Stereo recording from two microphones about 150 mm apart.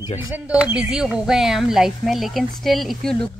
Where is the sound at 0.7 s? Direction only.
5° right (ahead or behind).